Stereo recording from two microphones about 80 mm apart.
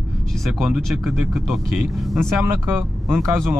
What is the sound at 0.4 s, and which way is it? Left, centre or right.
Speech, centre.